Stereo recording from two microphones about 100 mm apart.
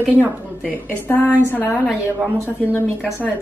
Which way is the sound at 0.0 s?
15° right (ahead or behind).